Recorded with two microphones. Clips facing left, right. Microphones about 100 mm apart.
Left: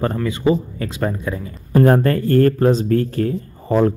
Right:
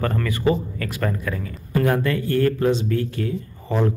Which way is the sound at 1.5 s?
40° left (ahead or behind).